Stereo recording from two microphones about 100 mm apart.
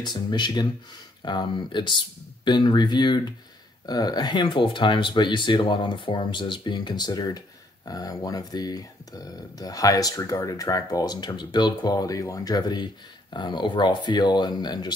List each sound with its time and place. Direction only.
0.0 s speech: 45° left (ahead or behind)